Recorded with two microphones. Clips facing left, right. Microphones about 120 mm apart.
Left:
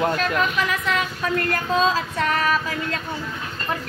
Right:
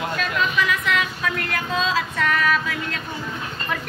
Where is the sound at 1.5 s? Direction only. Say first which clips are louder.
Left 4 dB; 35° left (ahead or behind).